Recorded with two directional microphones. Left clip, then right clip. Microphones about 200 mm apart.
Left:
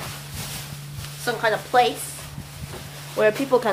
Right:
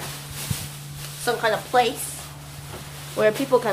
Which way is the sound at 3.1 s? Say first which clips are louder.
Even; 10° left (ahead or behind).